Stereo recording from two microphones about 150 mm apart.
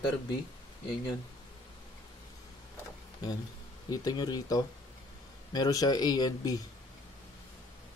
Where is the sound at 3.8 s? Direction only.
25° left (ahead or behind).